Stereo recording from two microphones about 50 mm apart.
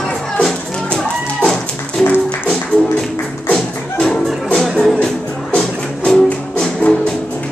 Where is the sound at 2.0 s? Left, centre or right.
Centre.